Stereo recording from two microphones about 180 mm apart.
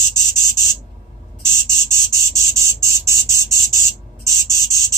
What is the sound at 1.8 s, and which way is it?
Chicken, 15° right (ahead or behind).